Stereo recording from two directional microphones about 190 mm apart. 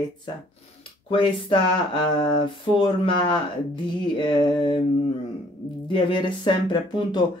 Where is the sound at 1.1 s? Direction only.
25° left (ahead or behind).